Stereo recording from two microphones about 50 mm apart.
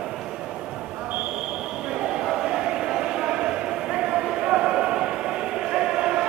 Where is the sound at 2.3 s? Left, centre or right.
Centre.